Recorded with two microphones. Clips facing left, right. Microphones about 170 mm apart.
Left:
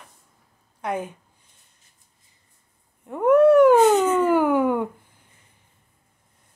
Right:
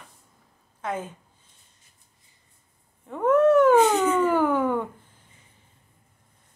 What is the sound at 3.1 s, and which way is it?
Cat, 10° left (ahead or behind).